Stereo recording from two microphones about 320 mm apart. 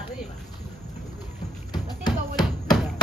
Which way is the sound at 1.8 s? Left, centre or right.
Centre.